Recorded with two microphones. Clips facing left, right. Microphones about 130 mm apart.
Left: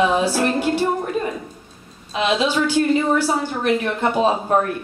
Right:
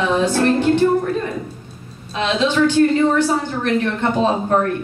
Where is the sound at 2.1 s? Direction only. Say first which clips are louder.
Right 2 dB; 10° left (ahead or behind).